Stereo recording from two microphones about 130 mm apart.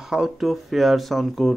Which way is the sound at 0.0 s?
5° right (ahead or behind).